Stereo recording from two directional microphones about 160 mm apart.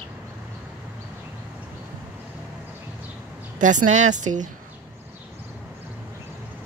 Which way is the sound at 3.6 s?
50° right (ahead or behind).